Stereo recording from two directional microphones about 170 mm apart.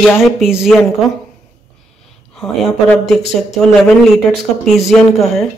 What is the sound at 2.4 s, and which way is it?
Speech, 5° left (ahead or behind).